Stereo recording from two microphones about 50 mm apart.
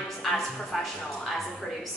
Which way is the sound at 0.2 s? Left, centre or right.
Centre.